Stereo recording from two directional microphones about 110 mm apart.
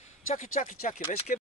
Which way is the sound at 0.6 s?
85° left.